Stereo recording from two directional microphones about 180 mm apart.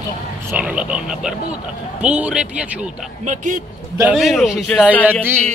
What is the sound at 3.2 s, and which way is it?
Speech, 45° right (ahead or behind).